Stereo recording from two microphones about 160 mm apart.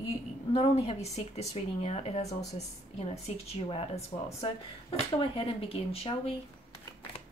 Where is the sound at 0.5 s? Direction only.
40° left (ahead or behind).